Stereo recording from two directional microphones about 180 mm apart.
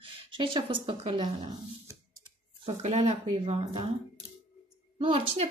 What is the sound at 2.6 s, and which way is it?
Speech, 35° right (ahead or behind).